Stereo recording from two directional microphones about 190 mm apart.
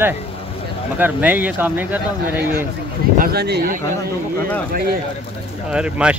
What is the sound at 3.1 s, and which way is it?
Speech, 55° right (ahead or behind).